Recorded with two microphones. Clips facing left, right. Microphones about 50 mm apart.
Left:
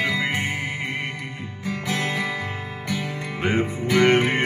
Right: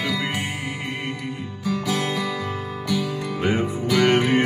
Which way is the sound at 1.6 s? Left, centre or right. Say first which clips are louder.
Right 2 dB; left.